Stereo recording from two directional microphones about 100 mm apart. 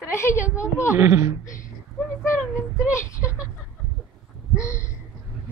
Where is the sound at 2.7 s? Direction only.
30° left (ahead or behind).